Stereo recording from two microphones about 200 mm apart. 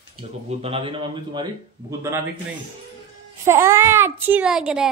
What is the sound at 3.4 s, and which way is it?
A child's voice, 15° right (ahead or behind).